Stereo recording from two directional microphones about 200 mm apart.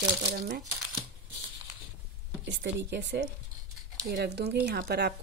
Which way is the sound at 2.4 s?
60° right (ahead or behind).